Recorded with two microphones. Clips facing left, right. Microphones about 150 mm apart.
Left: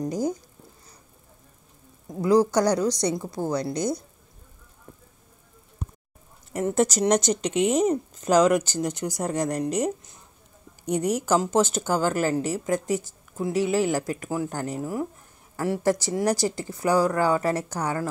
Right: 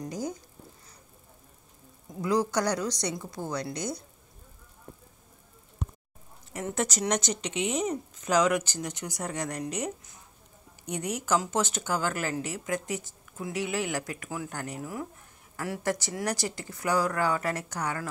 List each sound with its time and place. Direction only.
0.0 s speech: 40° left (ahead or behind)
2.2 s speech: 35° left (ahead or behind)
6.5 s speech: 35° left (ahead or behind)